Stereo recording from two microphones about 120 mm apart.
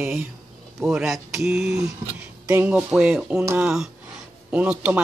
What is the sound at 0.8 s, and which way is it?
Speech, 5° right (ahead or behind).